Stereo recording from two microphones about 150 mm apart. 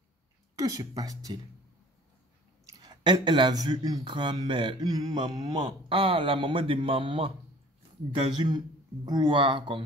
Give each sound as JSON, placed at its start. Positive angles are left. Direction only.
{"t": 0.6, "sound": "speech", "side_deg": -25}
{"t": 2.6, "sound": "speech", "side_deg": -25}